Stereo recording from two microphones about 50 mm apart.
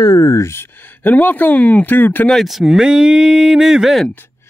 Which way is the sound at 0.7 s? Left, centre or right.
Left.